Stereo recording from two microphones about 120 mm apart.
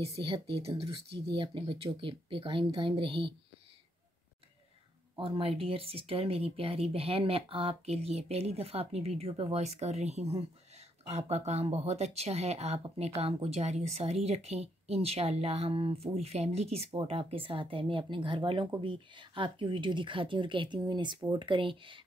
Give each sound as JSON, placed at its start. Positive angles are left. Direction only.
{"t": 0.0, "sound": "speech", "side_deg": -50}
{"t": 5.1, "sound": "speech", "side_deg": -50}